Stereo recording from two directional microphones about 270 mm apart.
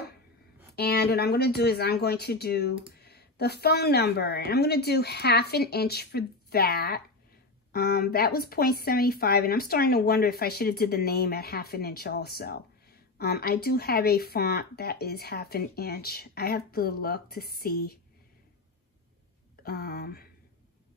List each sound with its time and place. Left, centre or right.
0.7 s speech: left
19.6 s speech: left